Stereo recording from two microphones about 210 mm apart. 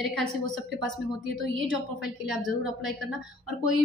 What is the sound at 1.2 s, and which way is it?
Speech, 65° right (ahead or behind).